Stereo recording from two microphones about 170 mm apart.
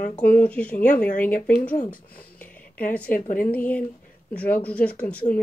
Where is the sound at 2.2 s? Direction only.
10° left (ahead or behind).